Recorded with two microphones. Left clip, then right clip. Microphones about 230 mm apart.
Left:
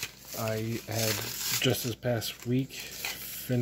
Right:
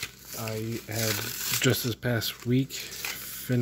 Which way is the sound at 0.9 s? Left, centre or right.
Centre.